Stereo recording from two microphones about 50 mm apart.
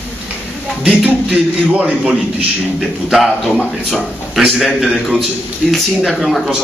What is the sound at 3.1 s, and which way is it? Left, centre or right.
A man's voice, centre.